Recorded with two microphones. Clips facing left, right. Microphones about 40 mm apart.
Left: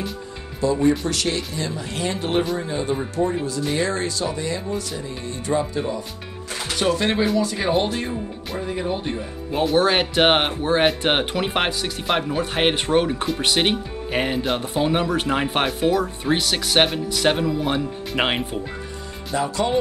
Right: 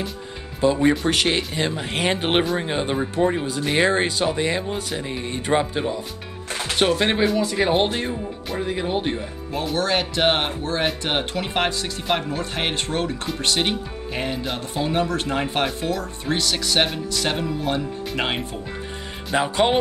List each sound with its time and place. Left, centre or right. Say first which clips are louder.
0.8 s speech: right 1 dB; right
3.2 s speech: right 2 dB; right
3.5 s speech: right 3 dB; right
9.8 s speech: left 4 dB; left
13.6 s speech: left 2 dB; left
15.8 s speech: left 6 dB; left
19.3 s speech: right 2 dB; right